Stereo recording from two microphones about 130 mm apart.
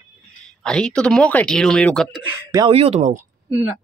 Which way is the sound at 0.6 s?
5° left (ahead or behind).